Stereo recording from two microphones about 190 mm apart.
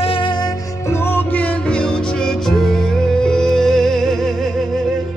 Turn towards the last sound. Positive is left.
turn(degrees=0)  # may be behind; listen again after turning